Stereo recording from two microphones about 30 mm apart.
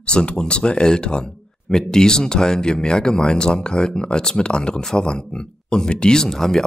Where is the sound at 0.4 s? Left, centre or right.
Left.